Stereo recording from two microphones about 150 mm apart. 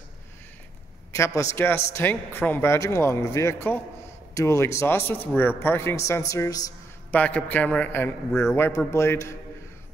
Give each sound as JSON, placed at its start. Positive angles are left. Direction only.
{"t": 1.1, "sound": "a man's voice", "side_deg": 20}
{"t": 7.1, "sound": "a man's voice", "side_deg": 10}